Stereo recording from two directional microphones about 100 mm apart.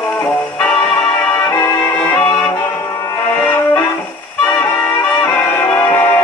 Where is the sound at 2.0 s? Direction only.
10° left (ahead or behind).